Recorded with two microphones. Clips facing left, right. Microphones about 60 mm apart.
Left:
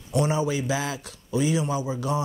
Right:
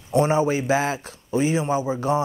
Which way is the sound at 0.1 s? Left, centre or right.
Right.